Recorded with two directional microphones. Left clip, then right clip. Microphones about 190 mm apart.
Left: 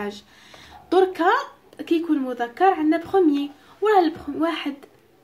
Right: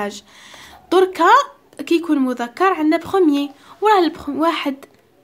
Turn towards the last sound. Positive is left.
turn(degrees=-40)  # may be behind; listen again after turning